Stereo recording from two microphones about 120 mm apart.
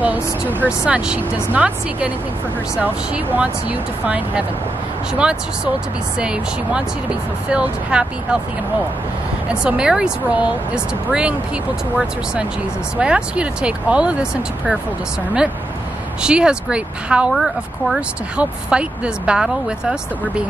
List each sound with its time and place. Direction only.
0.0 s speech: 15° right (ahead or behind)
9.5 s speech: 5° right (ahead or behind)
12.9 s speech: 10° right (ahead or behind)
16.2 s speech: 5° right (ahead or behind)